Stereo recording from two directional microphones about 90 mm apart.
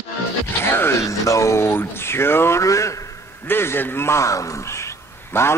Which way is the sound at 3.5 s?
25° left (ahead or behind).